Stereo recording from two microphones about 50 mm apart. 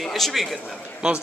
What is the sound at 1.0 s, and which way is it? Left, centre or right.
Speech, centre.